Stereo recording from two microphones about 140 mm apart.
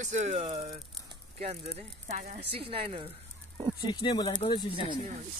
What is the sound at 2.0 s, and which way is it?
Speech, 75° right (ahead or behind).